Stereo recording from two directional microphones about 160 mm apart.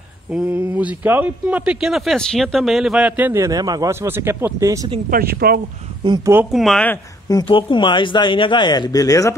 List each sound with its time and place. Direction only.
0.3 s a man's voice: 5° right (ahead or behind)
5.1 s speech: 70° right (ahead or behind)
6.0 s speech: 25° right (ahead or behind)
6.5 s speech: centre (ahead or behind)
6.9 s speech: 20° left (ahead or behind)